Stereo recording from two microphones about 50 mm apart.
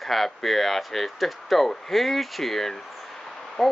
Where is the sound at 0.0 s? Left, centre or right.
Centre.